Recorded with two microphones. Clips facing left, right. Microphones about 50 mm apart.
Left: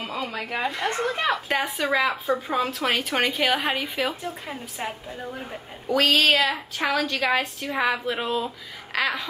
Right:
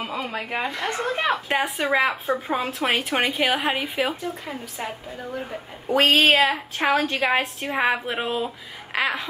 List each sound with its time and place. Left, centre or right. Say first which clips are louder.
0.1 s a woman's voice: right 1 dB; right
2.3 s a woman's voice: even; right
4.2 s a woman's voice: right 2 dB; centre
5.9 s a woman's voice: right 2 dB; right